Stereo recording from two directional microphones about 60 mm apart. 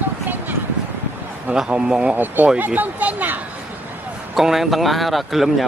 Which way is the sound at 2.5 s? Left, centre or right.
Right.